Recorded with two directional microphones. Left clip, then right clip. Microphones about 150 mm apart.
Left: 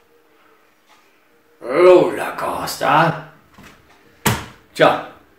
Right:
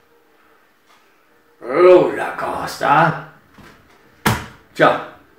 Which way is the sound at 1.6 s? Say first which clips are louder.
Even; centre (ahead or behind).